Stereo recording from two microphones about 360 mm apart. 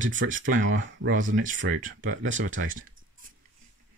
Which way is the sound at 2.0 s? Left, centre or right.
Right.